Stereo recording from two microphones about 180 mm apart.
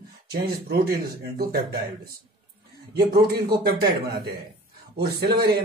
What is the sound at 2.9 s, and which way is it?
Speech, 60° right (ahead or behind).